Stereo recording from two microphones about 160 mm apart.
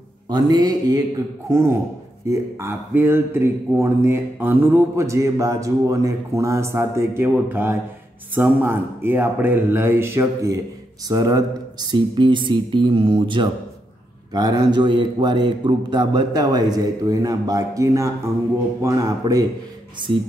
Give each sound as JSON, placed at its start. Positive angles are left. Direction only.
{"t": 0.3, "sound": "a man's voice", "side_deg": -25}
{"t": 2.2, "sound": "a man's voice", "side_deg": -15}